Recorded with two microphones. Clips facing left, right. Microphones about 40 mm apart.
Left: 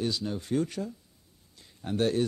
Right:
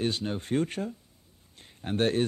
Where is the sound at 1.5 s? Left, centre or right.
Right.